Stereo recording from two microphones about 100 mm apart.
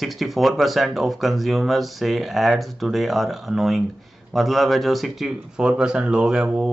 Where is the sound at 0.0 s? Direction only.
Centre (ahead or behind).